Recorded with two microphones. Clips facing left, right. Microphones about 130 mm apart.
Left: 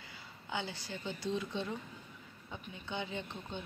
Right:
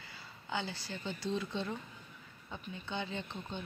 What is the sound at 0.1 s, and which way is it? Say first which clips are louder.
Speech: right 1 dB; 15° left (ahead or behind).